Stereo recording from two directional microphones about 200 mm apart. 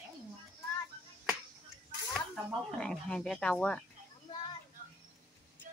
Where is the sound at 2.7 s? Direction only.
5° left (ahead or behind).